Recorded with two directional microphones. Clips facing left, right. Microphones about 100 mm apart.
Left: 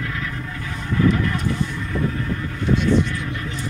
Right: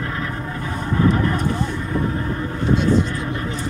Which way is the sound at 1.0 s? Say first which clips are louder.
Right 1 dB; 35° right (ahead or behind).